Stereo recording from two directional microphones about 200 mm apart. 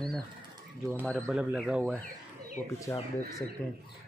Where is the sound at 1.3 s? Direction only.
5° right (ahead or behind).